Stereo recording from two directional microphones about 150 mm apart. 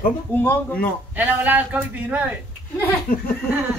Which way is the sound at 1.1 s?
10° right (ahead or behind).